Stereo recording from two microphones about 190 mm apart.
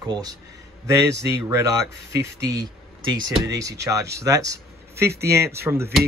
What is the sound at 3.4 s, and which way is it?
Speech, 15° right (ahead or behind).